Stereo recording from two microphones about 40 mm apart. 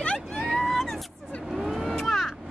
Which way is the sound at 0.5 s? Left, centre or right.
Centre.